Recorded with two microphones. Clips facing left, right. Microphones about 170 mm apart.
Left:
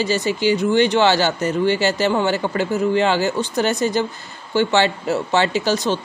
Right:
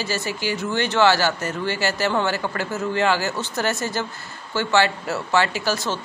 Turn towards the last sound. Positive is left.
turn(degrees=20)  # may be behind; listen again after turning